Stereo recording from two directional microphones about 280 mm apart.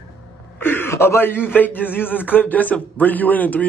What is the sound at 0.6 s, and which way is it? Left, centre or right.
Speech, centre.